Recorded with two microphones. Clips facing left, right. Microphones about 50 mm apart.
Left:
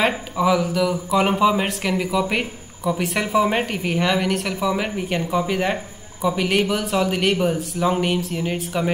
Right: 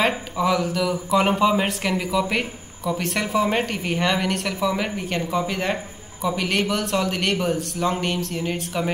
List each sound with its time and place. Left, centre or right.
0.0 s a man's voice: centre